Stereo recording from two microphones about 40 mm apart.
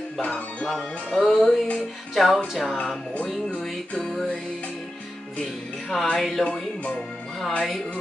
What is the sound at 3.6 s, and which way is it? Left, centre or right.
Speech, centre.